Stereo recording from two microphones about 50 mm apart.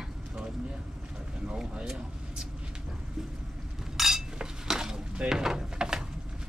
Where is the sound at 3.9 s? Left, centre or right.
Centre.